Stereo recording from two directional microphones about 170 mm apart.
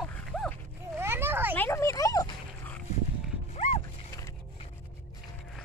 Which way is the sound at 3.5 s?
40° left (ahead or behind).